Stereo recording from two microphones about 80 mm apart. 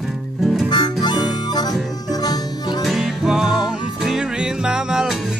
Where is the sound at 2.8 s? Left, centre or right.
Centre.